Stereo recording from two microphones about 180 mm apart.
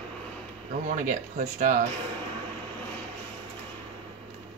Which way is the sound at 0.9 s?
45° right (ahead or behind).